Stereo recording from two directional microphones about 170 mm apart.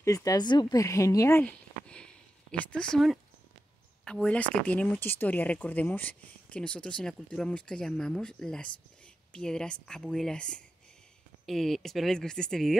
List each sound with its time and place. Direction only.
0.0 s speech: 20° left (ahead or behind); by 12.7 s centre (ahead or behind)